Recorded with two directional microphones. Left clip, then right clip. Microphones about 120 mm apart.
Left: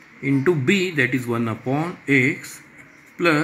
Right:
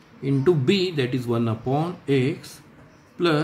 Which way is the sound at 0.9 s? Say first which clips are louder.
Left 4 dB; 20° left (ahead or behind).